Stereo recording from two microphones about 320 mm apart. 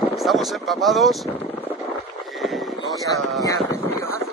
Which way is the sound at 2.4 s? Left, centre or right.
Centre.